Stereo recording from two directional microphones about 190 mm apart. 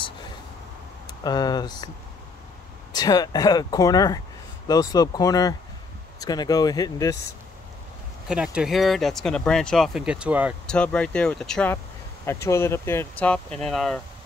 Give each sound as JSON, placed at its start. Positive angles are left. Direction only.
{"t": 1.2, "sound": "speech", "side_deg": 20}
{"t": 2.9, "sound": "speech", "side_deg": 20}
{"t": 8.3, "sound": "speech", "side_deg": -5}
{"t": 10.7, "sound": "speech", "side_deg": 5}